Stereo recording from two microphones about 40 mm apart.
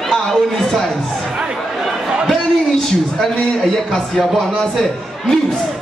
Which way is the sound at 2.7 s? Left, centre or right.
Centre.